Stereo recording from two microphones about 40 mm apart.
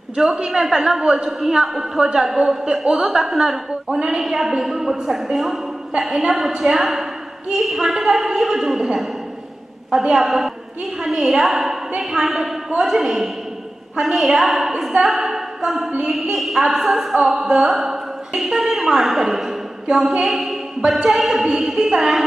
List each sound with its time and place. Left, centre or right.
0.1 s a woman's voice: centre
10.1 s a woman's voice: centre
15.1 s a sound: centre
16.0 s a woman's voice: centre
19.9 s a woman's voice: centre
20.2 s a sound: centre
21.0 s a woman's voice: centre